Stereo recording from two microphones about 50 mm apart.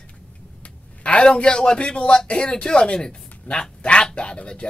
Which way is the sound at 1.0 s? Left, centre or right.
Left.